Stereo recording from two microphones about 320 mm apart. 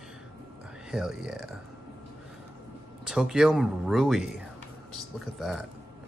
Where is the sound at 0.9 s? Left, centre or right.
Centre.